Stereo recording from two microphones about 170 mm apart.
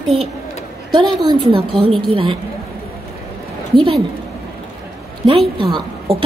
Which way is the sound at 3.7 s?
30° right (ahead or behind).